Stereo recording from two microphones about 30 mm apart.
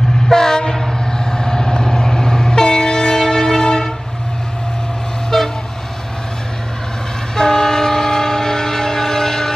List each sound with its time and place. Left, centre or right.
0.3 s train: left
5.3 s train: centre
7.3 s train: left